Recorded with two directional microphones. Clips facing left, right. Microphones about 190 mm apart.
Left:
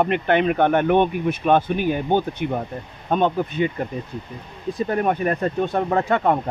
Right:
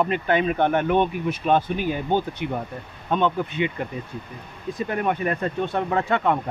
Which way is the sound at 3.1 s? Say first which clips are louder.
Left 2 dB; 40° left (ahead or behind).